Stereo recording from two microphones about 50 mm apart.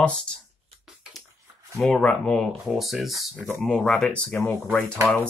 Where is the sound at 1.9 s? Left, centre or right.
Centre.